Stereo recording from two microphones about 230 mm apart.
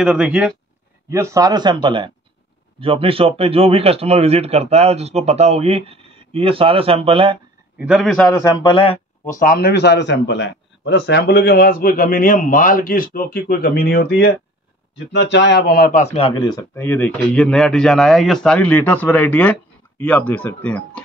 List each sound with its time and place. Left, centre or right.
0.0 s speech: centre; by 7.3 s right
7.8 s a man's voice: centre; by 8.9 s left
9.3 s a man's voice: left; by 21.0 s centre